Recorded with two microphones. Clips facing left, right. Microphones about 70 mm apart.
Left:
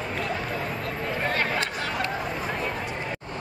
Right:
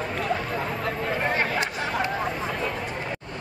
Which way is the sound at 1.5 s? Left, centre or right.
Centre.